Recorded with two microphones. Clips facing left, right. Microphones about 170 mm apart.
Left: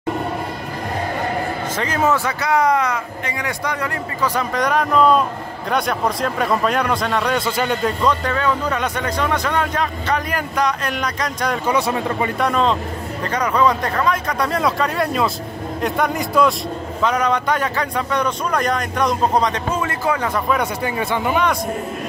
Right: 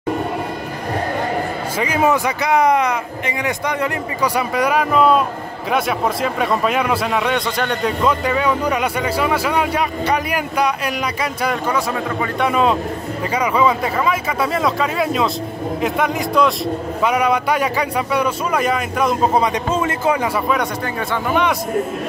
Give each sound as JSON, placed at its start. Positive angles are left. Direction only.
{"t": 1.8, "sound": "speech", "side_deg": -10}
{"t": 4.4, "sound": "speech", "side_deg": -10}
{"t": 8.0, "sound": "speech", "side_deg": -10}
{"t": 11.6, "sound": "a man's voice", "side_deg": 20}
{"t": 12.4, "sound": "speech", "side_deg": -5}
{"t": 19.7, "sound": "a man's voice", "side_deg": -25}
{"t": 20.8, "sound": "speech", "side_deg": 15}